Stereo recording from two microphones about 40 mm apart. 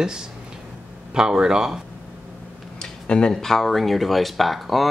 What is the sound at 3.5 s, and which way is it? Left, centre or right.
Speech, centre.